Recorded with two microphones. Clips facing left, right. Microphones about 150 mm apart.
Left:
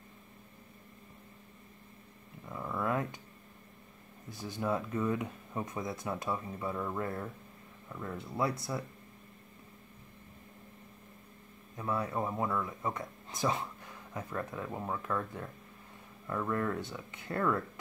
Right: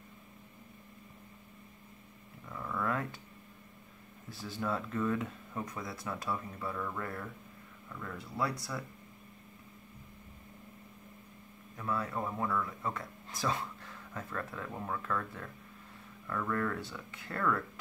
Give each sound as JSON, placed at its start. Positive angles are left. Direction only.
{"t": 2.4, "sound": "a sound", "side_deg": 20}
{"t": 4.3, "sound": "speech", "side_deg": 20}
{"t": 11.7, "sound": "speech", "side_deg": 20}